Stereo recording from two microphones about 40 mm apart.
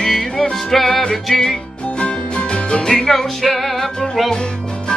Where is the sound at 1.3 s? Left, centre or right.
Left.